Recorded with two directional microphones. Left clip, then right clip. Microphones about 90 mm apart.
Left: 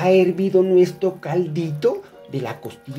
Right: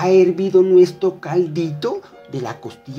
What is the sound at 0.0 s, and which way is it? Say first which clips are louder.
Speech: right 2 dB; 20° right (ahead or behind).